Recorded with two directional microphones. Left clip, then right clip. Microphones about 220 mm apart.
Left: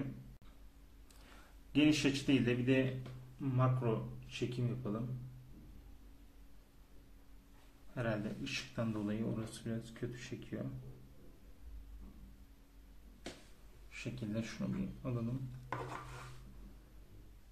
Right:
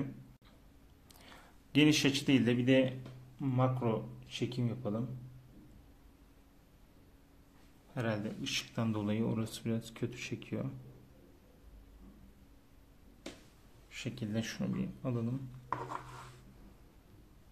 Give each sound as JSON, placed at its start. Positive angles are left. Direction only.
{"t": 1.7, "sound": "a man's voice", "side_deg": -40}
{"t": 7.9, "sound": "a man's voice", "side_deg": -40}
{"t": 13.8, "sound": "speech", "side_deg": -40}